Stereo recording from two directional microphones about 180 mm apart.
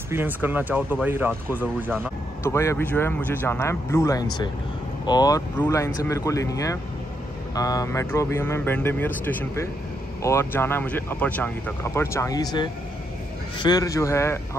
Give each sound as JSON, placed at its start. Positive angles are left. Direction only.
{"t": 0.1, "sound": "speech", "side_deg": -10}
{"t": 2.4, "sound": "speech", "side_deg": 15}